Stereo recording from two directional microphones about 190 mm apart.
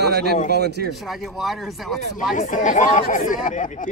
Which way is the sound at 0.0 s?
60° right (ahead or behind).